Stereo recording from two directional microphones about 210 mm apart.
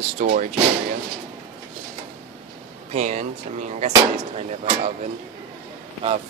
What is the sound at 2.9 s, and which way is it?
Speech, 35° right (ahead or behind).